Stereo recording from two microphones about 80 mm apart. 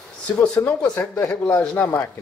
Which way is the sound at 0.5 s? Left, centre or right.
Centre.